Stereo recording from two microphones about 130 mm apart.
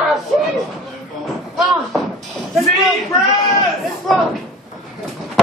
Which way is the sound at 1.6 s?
Centre (ahead or behind).